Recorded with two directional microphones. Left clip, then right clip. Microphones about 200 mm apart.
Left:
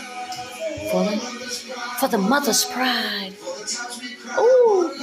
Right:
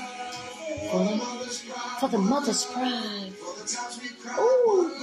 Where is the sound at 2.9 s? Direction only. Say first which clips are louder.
Left 9 dB; 25° left (ahead or behind).